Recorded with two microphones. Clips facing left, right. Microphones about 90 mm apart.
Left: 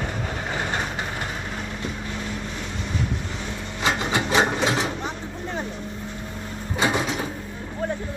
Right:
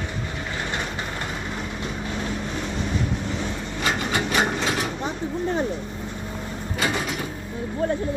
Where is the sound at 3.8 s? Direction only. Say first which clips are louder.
Left 2 dB; 25° left (ahead or behind).